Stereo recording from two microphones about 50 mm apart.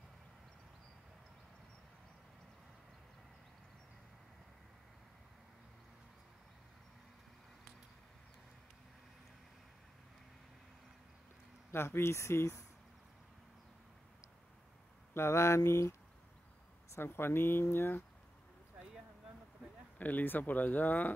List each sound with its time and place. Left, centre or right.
11.7 s speech: left
15.1 s speech: left
16.9 s speech: left
20.0 s speech: left